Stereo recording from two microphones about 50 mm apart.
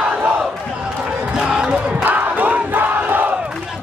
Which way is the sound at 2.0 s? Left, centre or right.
Right.